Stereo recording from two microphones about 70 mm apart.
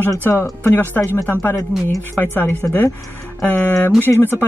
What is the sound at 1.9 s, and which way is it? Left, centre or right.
Speech, left.